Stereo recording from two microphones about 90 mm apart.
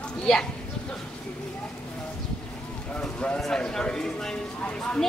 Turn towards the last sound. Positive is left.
turn(degrees=10)  # may be behind; listen again after turning